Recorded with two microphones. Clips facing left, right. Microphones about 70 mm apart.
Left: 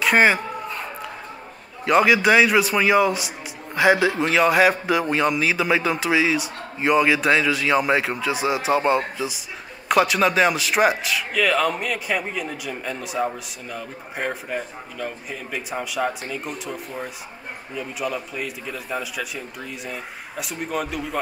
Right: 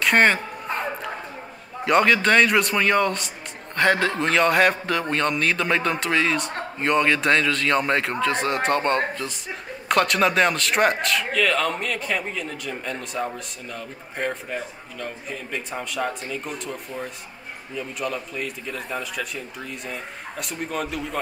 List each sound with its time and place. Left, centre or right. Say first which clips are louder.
0.0 s speech: left 1 dB; centre
1.9 s a man's voice: left 2 dB; centre